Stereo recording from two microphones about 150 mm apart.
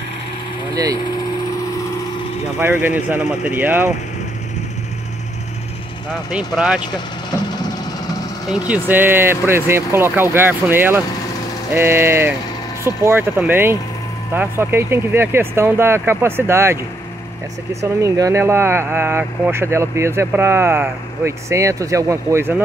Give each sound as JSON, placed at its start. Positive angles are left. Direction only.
{"t": 2.6, "sound": "speech", "side_deg": -15}
{"t": 6.3, "sound": "speech", "side_deg": -5}
{"t": 8.5, "sound": "speech", "side_deg": -10}
{"t": 17.8, "sound": "speech", "side_deg": -20}